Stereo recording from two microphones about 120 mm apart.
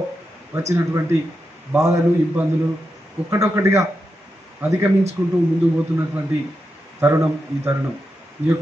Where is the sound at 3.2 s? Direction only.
25° right (ahead or behind).